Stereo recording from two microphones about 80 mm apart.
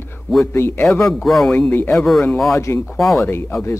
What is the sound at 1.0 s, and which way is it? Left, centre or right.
Speech, centre.